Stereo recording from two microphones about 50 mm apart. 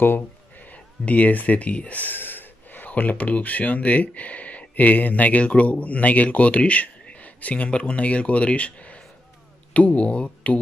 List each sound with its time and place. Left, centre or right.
0.7 s speech: left